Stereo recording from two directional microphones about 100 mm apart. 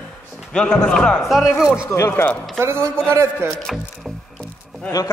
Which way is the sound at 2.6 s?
25° right (ahead or behind).